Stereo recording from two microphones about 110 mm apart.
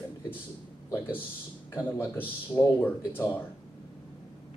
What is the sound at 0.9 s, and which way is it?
Speech, 20° left (ahead or behind).